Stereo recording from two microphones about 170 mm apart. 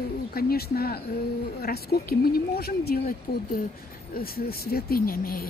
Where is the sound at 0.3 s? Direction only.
60° left (ahead or behind).